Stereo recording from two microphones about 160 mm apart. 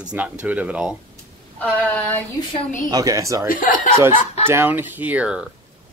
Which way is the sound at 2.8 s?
20° right (ahead or behind).